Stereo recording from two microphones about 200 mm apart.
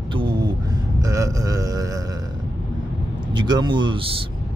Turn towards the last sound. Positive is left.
turn(degrees=-25)  # may be behind; listen again after turning